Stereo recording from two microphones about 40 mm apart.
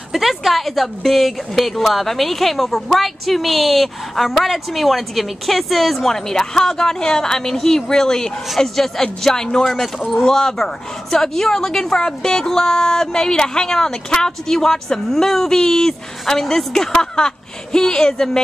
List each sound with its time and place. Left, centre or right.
0.1 s a woman's voice: centre
6.3 s a woman's voice: centre